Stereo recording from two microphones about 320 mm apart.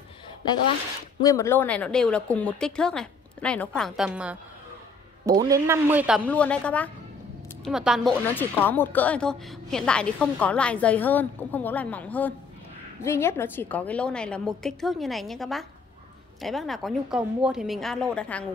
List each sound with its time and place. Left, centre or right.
1.2 s a woman's voice: centre